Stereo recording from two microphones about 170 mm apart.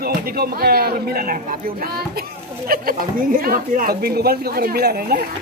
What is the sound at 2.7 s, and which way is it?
Speech, 55° right (ahead or behind).